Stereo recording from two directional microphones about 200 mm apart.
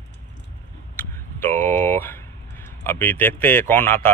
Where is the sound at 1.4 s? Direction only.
10° left (ahead or behind).